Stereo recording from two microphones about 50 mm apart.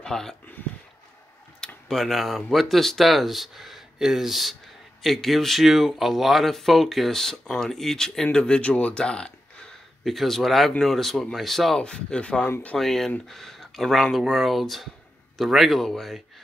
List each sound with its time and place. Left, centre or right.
0.0 s speech: centre
0.6 s a sound: left
1.9 s speech: centre
10.0 s speech: centre
11.8 s speech: centre
12.7 s speech: centre